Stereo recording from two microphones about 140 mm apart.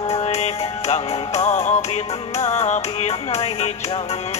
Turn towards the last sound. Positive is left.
turn(degrees=50)  # may be behind; listen again after turning